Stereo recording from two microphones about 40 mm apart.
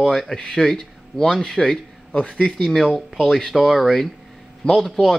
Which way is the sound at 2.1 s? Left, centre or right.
Left.